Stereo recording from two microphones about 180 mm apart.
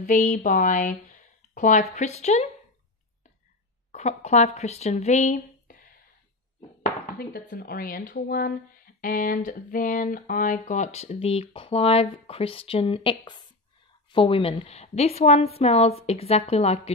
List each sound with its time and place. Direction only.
0.0 s a woman's voice: 45° left (ahead or behind)
3.9 s speech: 40° left (ahead or behind)
6.8 s a woman's voice: 50° left (ahead or behind); by 16.9 s 35° left (ahead or behind)